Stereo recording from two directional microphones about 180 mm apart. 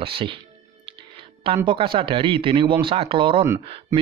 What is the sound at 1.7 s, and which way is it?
Speech, 30° right (ahead or behind).